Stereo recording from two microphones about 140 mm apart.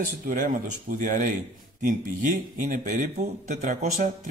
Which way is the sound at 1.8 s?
85° right.